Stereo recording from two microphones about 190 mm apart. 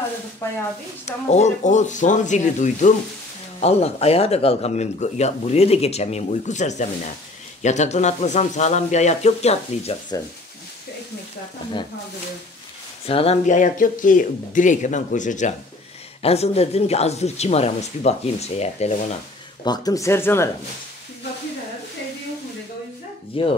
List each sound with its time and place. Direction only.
1.0 s speech: 35° left (ahead or behind)
13.0 s speech: 30° left (ahead or behind)
19.6 s speech: 20° left (ahead or behind)
23.3 s speech: 30° left (ahead or behind)